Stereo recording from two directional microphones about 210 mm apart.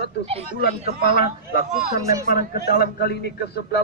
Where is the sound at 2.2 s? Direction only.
45° left (ahead or behind).